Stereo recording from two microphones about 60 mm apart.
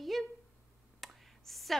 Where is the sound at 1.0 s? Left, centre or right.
Centre.